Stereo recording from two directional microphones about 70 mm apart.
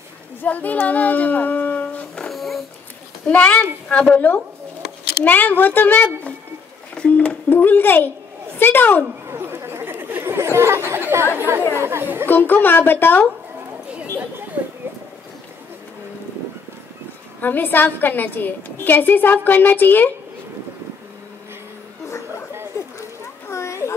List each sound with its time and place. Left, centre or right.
0.4 s speech: left
2.2 s dog: centre
3.3 s a woman's voice: centre
9.3 s chatter: right
11.3 s speech: right
12.3 s a woman's voice: left
17.4 s a woman's voice: left
22.7 s a sound: left